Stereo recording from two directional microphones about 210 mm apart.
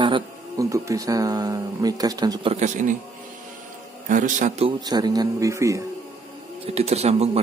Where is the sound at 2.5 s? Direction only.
35° right (ahead or behind).